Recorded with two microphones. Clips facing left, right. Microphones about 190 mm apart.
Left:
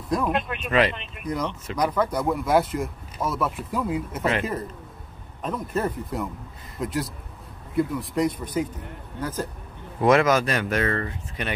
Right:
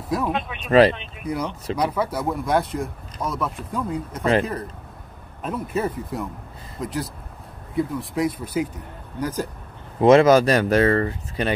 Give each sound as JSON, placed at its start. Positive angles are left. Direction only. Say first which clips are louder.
{"t": 0.1, "sound": "speech", "louder": "even", "side_deg": 0}
{"t": 0.6, "sound": "speech", "louder": "right 9 dB", "side_deg": -35}
{"t": 0.9, "sound": "speech", "louder": "right 2 dB", "side_deg": -5}
{"t": 5.4, "sound": "a man's voice", "louder": "right 1 dB", "side_deg": -5}
{"t": 9.9, "sound": "speech", "louder": "right 6 dB", "side_deg": -25}